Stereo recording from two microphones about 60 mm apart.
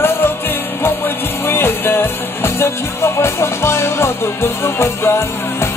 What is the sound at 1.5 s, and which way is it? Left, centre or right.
Music, left.